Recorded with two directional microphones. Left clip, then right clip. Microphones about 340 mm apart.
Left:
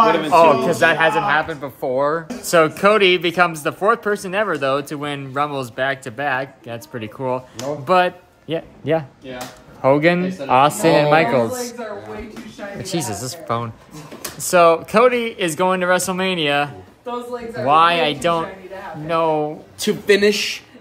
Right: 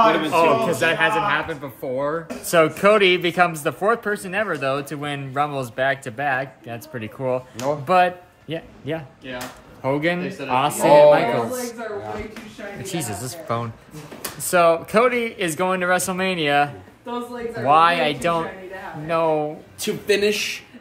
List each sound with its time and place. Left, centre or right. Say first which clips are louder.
0.3 s speech: left 5 dB; centre
8.5 s a man's voice: left 9 dB; left
12.8 s speech: left 4 dB; centre
19.8 s a man's voice: left 5 dB; left
20.2 s speech: left 4 dB; centre